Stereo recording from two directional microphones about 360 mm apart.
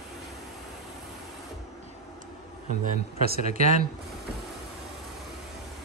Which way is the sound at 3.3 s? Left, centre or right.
Right.